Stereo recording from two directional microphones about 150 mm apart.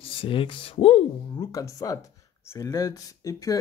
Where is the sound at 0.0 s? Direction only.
35° left (ahead or behind).